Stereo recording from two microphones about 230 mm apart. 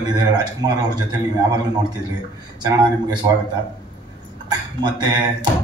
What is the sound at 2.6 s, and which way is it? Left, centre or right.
Speech, centre.